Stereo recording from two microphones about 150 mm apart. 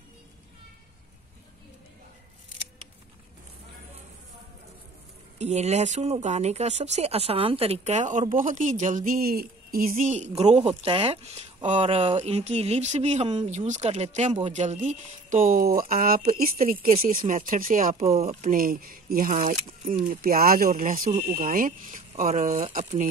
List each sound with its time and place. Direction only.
5.4 s speech: 50° right (ahead or behind); by 9.9 s 75° right (ahead or behind)
9.9 s speech: 50° right (ahead or behind)
10.6 s speech: 35° right (ahead or behind)
11.6 s speech: 45° right (ahead or behind); by 16.4 s 75° right (ahead or behind)
17.3 s speech: 65° right (ahead or behind); by 18.3 s 45° right (ahead or behind)
18.4 s speech: 70° right (ahead or behind)
20.1 s speech: 75° right (ahead or behind); by 22.7 s 50° right (ahead or behind)